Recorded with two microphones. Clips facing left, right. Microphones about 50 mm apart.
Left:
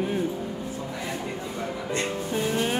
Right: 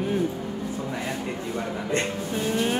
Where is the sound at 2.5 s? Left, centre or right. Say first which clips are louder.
Right 2 dB; centre.